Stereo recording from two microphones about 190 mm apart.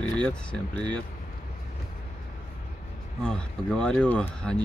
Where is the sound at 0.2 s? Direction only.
5° left (ahead or behind).